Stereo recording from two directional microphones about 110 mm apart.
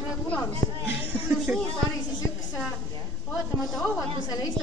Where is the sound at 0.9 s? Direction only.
15° right (ahead or behind).